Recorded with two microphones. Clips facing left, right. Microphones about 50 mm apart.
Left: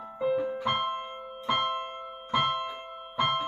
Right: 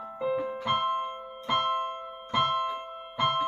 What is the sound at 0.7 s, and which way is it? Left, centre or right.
Music, centre.